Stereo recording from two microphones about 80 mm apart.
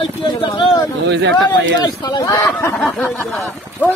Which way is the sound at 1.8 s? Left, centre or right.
Left.